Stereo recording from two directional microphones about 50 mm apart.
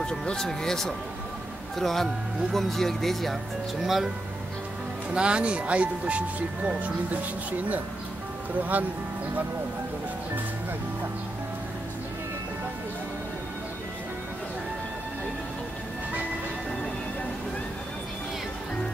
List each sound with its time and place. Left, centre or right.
0.0 s speech: centre
3.8 s speech: centre
5.1 s speech: right
8.7 s speech: right